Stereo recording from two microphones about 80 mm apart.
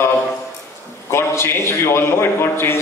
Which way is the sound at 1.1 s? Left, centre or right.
Left.